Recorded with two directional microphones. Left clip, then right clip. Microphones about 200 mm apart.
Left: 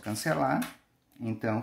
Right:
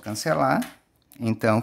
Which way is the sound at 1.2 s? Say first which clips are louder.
Right 10 dB; 40° right (ahead or behind).